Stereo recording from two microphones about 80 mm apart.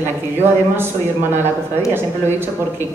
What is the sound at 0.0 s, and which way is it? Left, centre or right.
Speech, right.